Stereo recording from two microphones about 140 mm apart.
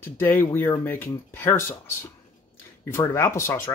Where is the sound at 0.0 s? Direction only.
15° left (ahead or behind).